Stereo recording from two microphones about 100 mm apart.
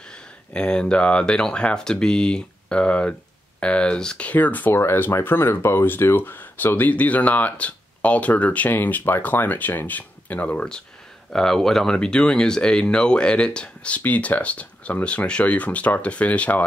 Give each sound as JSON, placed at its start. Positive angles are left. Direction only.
{"t": 0.5, "sound": "speech", "side_deg": 10}